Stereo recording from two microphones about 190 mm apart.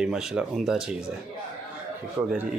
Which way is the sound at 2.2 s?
15° right (ahead or behind).